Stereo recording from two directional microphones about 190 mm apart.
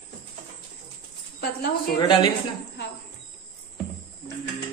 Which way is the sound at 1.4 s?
55° left (ahead or behind).